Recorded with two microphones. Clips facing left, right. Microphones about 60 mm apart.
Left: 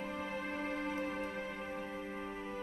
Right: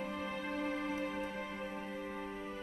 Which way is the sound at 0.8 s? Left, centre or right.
Left.